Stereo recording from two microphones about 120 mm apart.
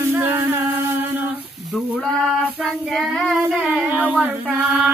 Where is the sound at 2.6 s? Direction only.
Centre (ahead or behind).